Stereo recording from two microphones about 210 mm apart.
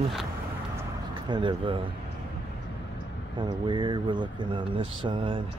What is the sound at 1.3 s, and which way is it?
Speech, 25° right (ahead or behind).